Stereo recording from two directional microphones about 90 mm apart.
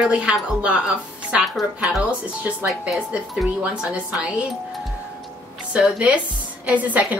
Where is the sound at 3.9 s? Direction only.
15° right (ahead or behind).